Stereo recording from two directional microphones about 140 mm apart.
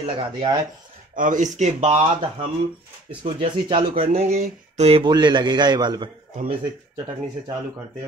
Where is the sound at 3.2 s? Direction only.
40° right (ahead or behind).